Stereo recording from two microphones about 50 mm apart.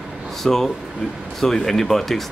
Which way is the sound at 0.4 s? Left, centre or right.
Centre.